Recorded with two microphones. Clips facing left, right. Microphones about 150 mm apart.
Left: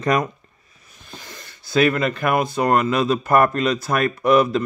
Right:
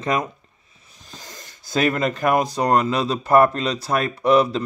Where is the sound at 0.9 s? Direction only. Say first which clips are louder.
Left 2 dB; 40° right (ahead or behind).